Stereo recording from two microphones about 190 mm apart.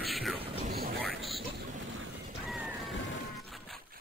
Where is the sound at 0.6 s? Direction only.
55° right (ahead or behind).